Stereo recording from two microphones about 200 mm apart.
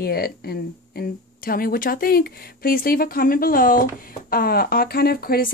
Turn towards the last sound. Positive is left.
turn(degrees=50)  # may be behind; listen again after turning